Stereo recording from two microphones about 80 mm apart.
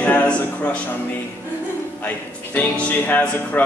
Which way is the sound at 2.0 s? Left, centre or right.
Left.